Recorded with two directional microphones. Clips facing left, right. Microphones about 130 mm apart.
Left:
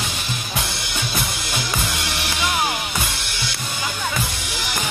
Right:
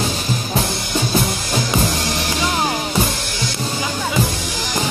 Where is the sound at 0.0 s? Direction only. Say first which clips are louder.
Right 7 dB; 35° right (ahead or behind).